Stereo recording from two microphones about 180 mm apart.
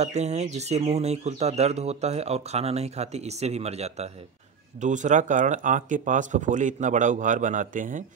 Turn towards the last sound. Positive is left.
turn(degrees=-45)  # may be behind; listen again after turning